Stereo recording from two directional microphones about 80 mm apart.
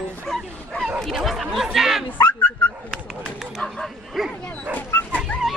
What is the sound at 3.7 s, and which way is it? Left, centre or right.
Bow-wow, centre.